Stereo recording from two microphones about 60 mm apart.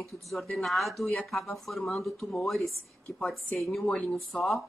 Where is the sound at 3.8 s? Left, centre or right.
Left.